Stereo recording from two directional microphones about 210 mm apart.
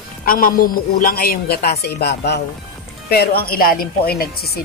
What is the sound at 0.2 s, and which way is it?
Speech, 45° left (ahead or behind).